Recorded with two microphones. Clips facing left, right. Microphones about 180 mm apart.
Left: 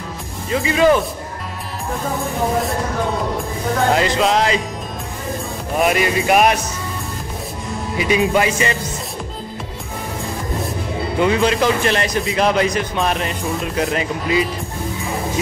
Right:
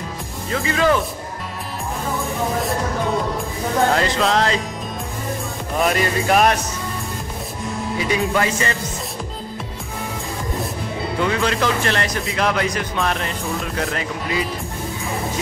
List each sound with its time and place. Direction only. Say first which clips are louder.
0.5 s speech: left 4 dB; 15° left (ahead or behind)
3.9 s speech: left 2 dB; 15° left (ahead or behind)
5.8 s speech: left 2 dB; 15° left (ahead or behind)
8.0 s speech: left 4 dB; 15° left (ahead or behind)
11.1 s speech: left 5 dB; 20° left (ahead or behind)